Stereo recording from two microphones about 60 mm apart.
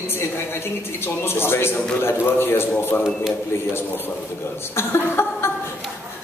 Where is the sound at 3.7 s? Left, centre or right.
Left.